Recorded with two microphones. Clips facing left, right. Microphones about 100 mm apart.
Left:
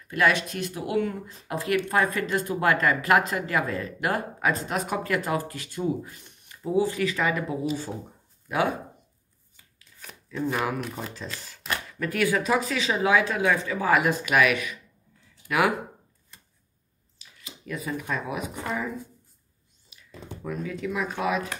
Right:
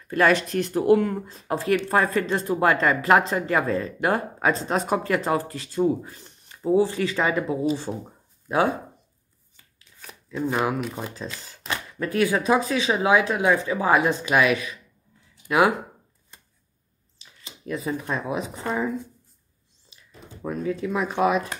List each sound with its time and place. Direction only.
0.5 s speech: 45° right (ahead or behind)
1.2 s speech: 30° right (ahead or behind)
10.3 s speech: 20° right (ahead or behind)
15.3 s a sound: 25° right (ahead or behind)
17.2 s speech: 30° right (ahead or behind)
20.4 s speech: 30° right (ahead or behind)